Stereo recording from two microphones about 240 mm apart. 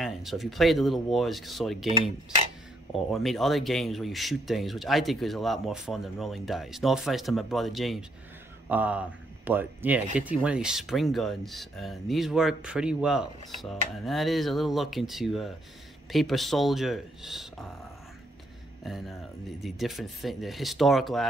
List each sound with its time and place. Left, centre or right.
0.0 s speech: centre
18.9 s speech: centre